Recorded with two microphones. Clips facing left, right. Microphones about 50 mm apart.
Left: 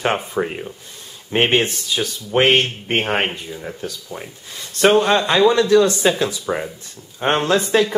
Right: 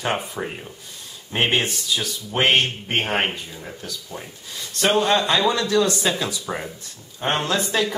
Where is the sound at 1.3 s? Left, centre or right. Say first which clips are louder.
Left 5 dB; left.